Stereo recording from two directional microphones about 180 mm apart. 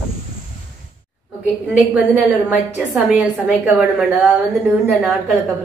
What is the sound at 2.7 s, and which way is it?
Speech, 10° right (ahead or behind).